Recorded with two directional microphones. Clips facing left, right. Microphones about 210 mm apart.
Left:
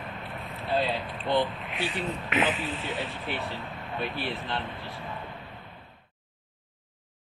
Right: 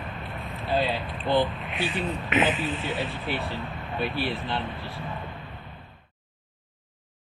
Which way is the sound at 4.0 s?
10° right (ahead or behind).